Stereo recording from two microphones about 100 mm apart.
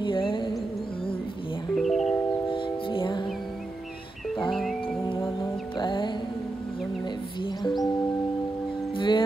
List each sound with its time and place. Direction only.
0.0 s music: 60° left (ahead or behind)
1.8 s music: centre (ahead or behind)
2.5 s music: 60° left (ahead or behind)
5.4 s music: 50° left (ahead or behind)
8.9 s music: 55° left (ahead or behind)